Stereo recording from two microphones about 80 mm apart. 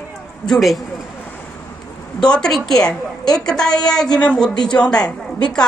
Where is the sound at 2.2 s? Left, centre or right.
Centre.